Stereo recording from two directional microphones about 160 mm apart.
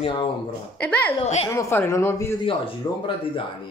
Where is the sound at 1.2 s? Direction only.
45° left (ahead or behind).